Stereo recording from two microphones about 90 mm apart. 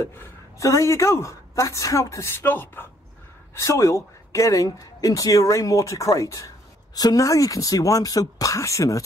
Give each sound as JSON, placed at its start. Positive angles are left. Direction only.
{"t": 0.0, "sound": "a woman's voice", "side_deg": 25}
{"t": 2.4, "sound": "a woman's voice", "side_deg": 20}